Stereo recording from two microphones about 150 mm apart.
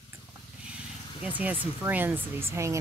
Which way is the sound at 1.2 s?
10° right (ahead or behind).